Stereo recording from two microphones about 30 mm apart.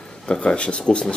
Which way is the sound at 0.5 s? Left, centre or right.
Left.